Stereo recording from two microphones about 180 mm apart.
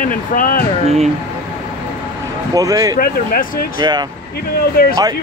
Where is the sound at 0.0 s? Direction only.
50° left (ahead or behind).